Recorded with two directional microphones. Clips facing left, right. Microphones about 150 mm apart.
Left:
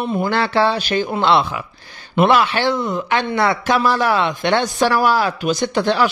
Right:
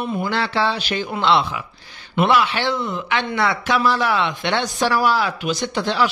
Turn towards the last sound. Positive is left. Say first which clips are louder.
# left 4 dB
turn(degrees=50)  # may be behind; listen again after turning